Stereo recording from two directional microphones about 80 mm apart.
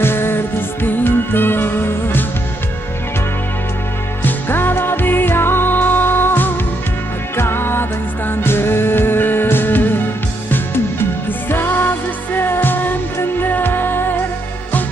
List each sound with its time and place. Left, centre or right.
0.0 s music: left
4.2 s music: left